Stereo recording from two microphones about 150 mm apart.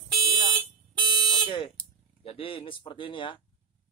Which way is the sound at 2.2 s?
35° left (ahead or behind).